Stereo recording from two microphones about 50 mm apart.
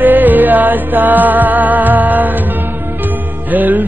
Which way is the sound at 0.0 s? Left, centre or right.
Right.